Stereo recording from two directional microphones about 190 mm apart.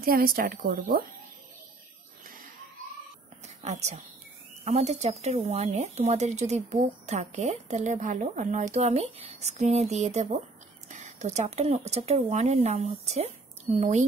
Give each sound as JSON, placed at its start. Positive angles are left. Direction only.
{"t": 0.0, "sound": "a woman's voice", "side_deg": -50}
{"t": 3.4, "sound": "a sound", "side_deg": -35}
{"t": 4.6, "sound": "speech", "side_deg": -35}